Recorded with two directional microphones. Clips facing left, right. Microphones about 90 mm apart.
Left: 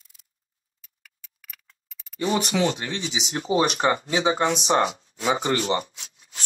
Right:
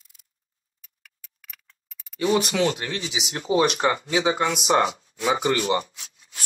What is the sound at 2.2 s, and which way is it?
Speech, 30° left (ahead or behind).